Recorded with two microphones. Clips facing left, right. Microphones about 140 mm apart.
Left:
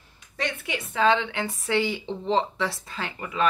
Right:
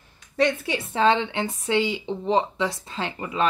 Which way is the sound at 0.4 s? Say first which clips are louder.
Right 8 dB; 35° right (ahead or behind).